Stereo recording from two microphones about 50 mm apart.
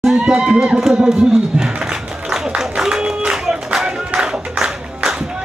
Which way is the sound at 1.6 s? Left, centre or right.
Centre.